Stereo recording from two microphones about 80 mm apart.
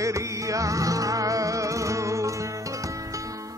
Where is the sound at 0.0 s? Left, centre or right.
Right.